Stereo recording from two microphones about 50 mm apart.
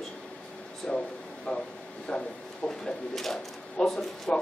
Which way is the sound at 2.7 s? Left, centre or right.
Centre.